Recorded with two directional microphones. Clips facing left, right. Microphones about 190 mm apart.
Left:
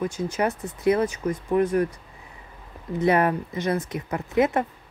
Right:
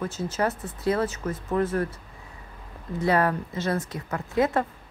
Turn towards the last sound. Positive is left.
turn(degrees=20)  # may be behind; listen again after turning